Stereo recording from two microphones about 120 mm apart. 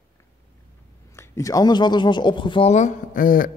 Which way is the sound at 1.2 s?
30° left (ahead or behind).